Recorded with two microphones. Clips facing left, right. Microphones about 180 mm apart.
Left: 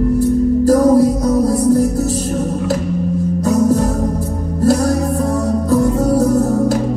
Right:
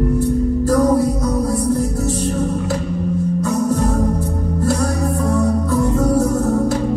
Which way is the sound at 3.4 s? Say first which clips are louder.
Left 7 dB; 35° left (ahead or behind).